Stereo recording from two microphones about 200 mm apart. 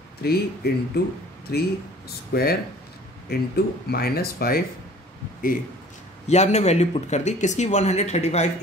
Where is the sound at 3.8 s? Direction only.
50° left (ahead or behind).